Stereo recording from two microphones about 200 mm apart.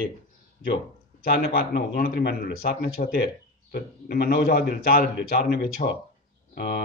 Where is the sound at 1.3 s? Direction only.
50° left (ahead or behind).